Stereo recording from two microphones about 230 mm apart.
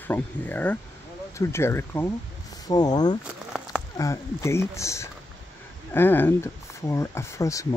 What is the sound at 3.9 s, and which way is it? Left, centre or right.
Speech, centre.